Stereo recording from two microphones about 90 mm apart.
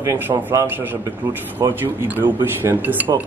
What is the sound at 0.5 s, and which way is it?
Speech, 25° right (ahead or behind).